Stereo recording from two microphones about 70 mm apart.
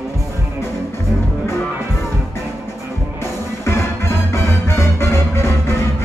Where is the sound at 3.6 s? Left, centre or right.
Left.